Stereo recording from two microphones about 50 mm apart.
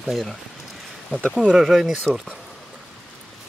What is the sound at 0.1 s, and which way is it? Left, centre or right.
Speech, centre.